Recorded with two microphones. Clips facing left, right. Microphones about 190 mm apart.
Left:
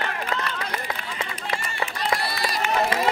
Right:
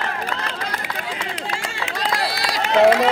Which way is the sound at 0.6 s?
90° right.